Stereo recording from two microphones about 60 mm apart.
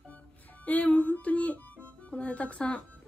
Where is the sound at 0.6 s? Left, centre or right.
Left.